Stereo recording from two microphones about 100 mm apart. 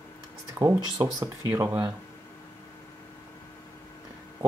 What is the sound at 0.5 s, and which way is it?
Speech, 30° right (ahead or behind).